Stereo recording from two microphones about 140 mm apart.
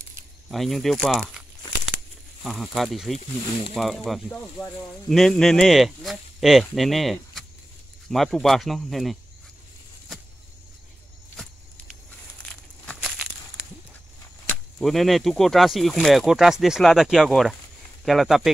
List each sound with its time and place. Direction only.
0.5 s speech: centre (ahead or behind)
2.4 s speech: centre (ahead or behind)
12.4 s crumpling: 5° left (ahead or behind)
14.8 s speech: centre (ahead or behind)